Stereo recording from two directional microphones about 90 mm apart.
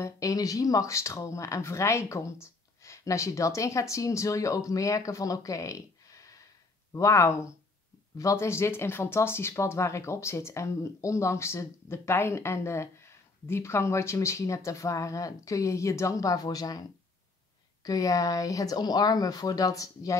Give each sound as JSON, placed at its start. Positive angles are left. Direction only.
{"t": 0.0, "sound": "speech", "side_deg": 40}
{"t": 17.8, "sound": "speech", "side_deg": 40}